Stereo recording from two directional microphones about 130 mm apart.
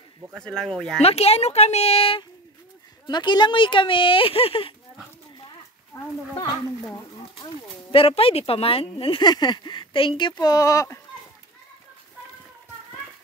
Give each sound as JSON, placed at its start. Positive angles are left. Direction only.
{"t": 0.4, "sound": "speech", "side_deg": 5}
{"t": 1.0, "sound": "speech", "side_deg": 50}
{"t": 3.1, "sound": "speech", "side_deg": 35}
{"t": 7.9, "sound": "speech", "side_deg": 45}